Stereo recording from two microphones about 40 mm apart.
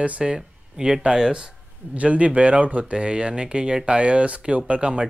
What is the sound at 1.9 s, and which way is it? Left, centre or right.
Speech, right.